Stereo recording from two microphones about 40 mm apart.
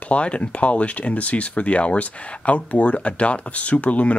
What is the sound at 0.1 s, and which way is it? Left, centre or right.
Speech, left.